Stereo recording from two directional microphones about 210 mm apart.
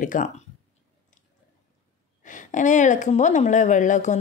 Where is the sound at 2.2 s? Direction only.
35° left (ahead or behind).